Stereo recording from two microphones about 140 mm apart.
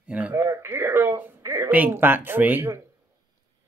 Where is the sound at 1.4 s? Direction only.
20° right (ahead or behind).